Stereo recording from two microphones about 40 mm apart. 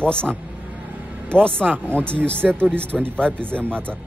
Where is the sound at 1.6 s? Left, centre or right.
Right.